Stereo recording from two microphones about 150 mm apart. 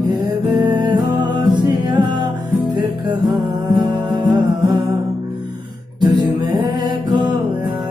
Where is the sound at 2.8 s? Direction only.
25° right (ahead or behind).